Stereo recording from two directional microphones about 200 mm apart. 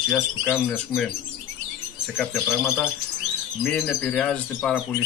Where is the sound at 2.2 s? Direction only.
Centre (ahead or behind).